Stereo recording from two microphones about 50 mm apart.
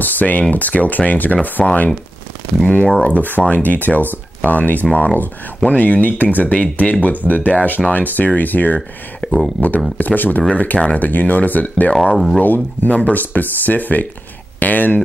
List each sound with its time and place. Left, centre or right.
0.0 s speech: left
3.0 s speech: left
9.2 s a sound: left
9.6 s speech: left